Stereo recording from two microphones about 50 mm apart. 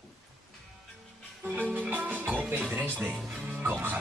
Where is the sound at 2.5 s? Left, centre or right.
Right.